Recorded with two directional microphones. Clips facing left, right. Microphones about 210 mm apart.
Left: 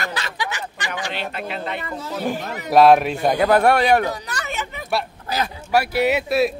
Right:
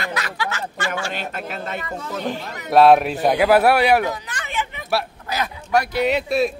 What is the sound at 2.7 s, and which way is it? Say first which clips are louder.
Speech: even; centre (ahead or behind).